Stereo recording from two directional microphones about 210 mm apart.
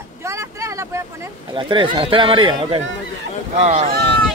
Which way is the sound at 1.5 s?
25° right (ahead or behind).